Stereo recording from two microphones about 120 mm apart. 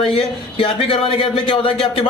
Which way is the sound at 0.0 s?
50° left (ahead or behind).